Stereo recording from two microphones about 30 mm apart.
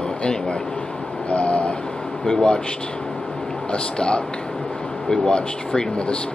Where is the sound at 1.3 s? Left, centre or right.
Left.